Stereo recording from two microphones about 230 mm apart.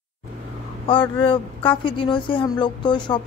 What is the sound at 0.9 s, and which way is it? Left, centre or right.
A woman's voice, left.